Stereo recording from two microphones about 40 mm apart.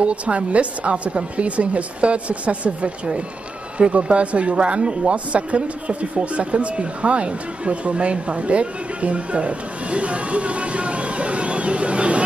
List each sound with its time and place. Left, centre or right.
0.0 s speech: right